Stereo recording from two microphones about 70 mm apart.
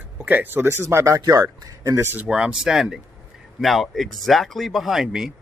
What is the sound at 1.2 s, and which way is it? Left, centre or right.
Speech, right.